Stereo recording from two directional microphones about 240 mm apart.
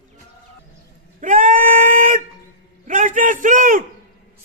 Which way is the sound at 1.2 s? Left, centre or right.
Right.